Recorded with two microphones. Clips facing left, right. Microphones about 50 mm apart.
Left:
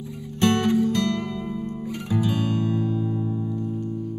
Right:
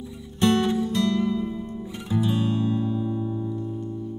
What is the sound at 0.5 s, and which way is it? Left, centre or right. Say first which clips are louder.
Music: left 2 dB; left.